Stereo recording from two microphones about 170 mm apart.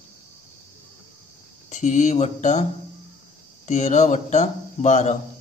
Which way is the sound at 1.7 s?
45° left (ahead or behind).